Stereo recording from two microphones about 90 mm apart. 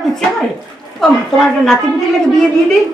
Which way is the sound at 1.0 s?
5° left (ahead or behind).